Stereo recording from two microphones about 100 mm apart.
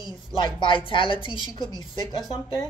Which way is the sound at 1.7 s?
45° left (ahead or behind).